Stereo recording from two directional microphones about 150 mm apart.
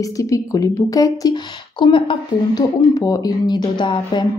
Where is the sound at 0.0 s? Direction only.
20° left (ahead or behind).